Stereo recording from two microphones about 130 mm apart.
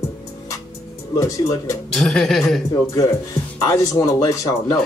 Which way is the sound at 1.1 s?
25° left (ahead or behind).